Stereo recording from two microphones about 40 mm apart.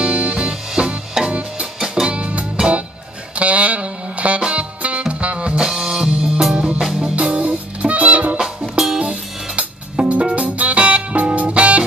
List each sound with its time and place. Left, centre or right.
0.0 s music: right
1.2 s music: centre
2.0 s music: right
3.3 s saxophone: right
4.4 s music: right
5.8 s music: centre
7.2 s music: right